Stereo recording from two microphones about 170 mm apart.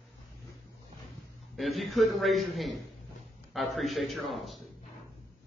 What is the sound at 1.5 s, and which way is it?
A man's voice, centre (ahead or behind).